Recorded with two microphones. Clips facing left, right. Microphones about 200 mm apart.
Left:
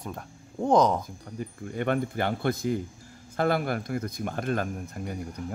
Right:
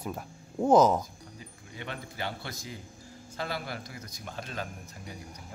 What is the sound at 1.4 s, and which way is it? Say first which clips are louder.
Speech: left 14 dB; 55° left (ahead or behind).